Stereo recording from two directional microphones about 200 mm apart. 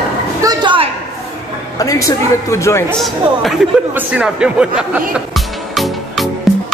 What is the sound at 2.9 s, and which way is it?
Speech, centre (ahead or behind).